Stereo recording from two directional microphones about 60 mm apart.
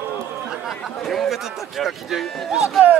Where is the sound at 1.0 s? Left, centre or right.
Centre.